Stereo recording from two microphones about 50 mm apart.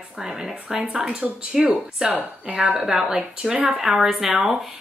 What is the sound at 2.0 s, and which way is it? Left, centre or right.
Speech, centre.